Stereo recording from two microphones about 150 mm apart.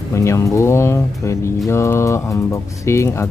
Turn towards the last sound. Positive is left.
turn(degrees=20)  # may be behind; listen again after turning